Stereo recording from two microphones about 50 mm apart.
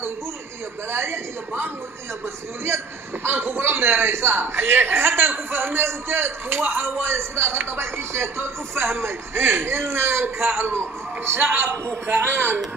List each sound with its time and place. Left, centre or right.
0.8 s speech: right
3.3 s speech: right
11.7 s a man's voice: right
12.2 s speech: right